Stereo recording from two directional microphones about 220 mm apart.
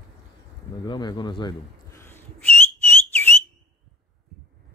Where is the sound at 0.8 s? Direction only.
20° left (ahead or behind).